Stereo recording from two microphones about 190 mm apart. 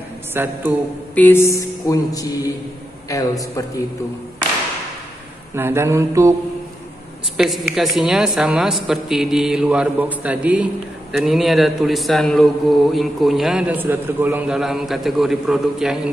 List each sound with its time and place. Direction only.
0.3 s mantra: 10° right (ahead or behind)
1.1 s a sound: 10° left (ahead or behind)
5.5 s mantra: 15° right (ahead or behind)
7.3 s a woman's voice: centre (ahead or behind)